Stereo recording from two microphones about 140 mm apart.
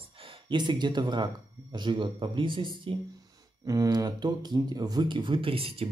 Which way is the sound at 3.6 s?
25° right (ahead or behind).